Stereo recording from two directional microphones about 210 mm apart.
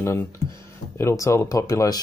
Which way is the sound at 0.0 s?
10° left (ahead or behind).